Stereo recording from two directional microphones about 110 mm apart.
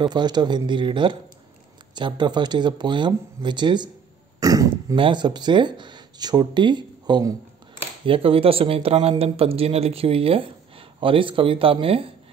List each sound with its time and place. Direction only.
0.0 s speech: 40° right (ahead or behind)
4.4 s dog: 35° right (ahead or behind)
4.9 s speech: 45° right (ahead or behind)
8.0 s speech: 55° right (ahead or behind)